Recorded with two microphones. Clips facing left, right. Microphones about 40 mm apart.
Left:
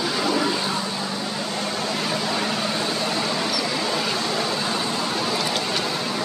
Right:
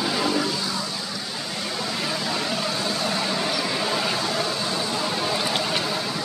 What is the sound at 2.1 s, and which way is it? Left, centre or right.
Vehicle, centre.